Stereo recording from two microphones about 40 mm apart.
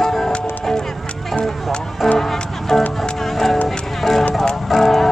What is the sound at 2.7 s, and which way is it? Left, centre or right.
Music, centre.